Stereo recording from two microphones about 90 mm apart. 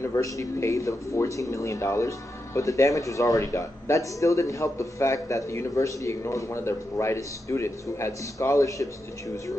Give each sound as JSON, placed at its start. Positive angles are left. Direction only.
{"t": 0.0, "sound": "speech", "side_deg": 35}